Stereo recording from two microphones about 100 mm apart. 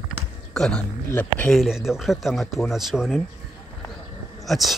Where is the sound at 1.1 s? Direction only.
15° left (ahead or behind).